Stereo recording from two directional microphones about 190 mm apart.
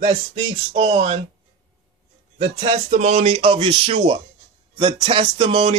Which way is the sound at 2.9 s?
35° right (ahead or behind).